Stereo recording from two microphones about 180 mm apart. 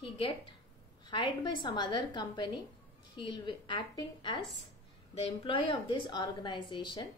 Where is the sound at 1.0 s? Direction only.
25° left (ahead or behind).